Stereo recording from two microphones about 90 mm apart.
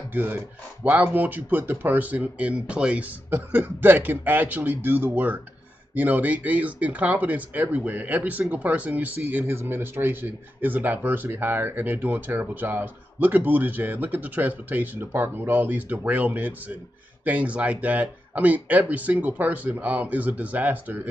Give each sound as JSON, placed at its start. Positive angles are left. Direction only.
{"t": 0.1, "sound": "speech", "side_deg": -20}
{"t": 3.3, "sound": "speech", "side_deg": -25}